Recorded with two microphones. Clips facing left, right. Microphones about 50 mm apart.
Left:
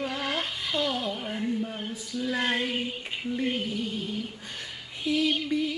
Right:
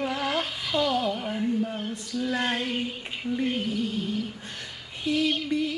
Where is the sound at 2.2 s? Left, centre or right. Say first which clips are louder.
Even; centre.